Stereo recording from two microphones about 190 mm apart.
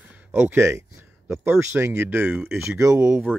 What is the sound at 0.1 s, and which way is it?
Speech, 10° right (ahead or behind).